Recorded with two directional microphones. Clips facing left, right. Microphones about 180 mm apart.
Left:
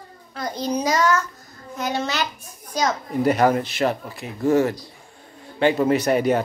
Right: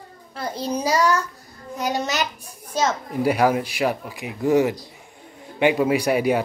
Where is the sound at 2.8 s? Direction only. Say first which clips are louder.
Even; 5° right (ahead or behind).